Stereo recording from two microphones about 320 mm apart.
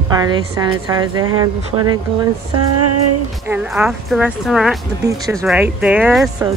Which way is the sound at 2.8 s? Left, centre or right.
Right.